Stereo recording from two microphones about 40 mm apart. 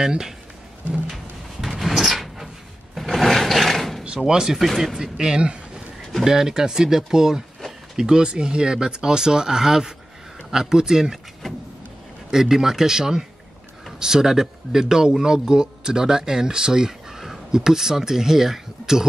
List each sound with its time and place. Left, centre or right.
0.0 s speech: centre
1.1 s drawer open or close: centre
4.3 s speech: centre
4.6 s speech: centre
4.9 s speech: centre
12.3 s speech: centre